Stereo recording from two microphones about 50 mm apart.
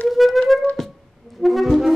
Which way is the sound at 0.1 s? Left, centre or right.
Centre.